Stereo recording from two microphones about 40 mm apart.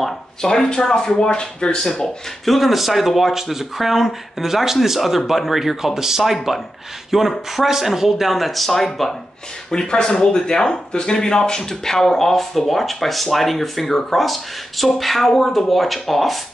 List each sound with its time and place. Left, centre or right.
0.4 s speech: centre
2.4 s speech: centre
9.7 s speech: centre